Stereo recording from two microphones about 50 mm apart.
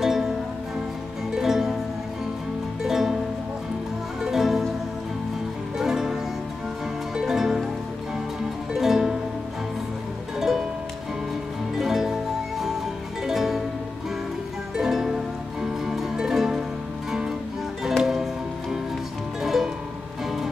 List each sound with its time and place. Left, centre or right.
0.0 s music: centre
1.3 s music: centre
2.8 s music: centre
4.2 s music: centre
5.8 s music: centre
7.2 s music: centre
8.7 s music: centre
10.4 s music: centre
11.8 s music: centre
14.8 s music: centre
17.8 s music: centre